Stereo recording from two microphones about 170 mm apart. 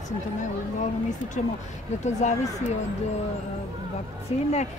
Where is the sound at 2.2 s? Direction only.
45° left (ahead or behind).